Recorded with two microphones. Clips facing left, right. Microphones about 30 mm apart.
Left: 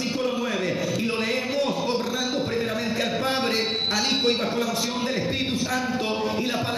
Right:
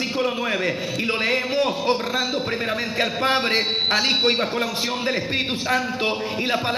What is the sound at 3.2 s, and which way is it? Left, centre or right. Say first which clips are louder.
Speech: right 7 dB; right.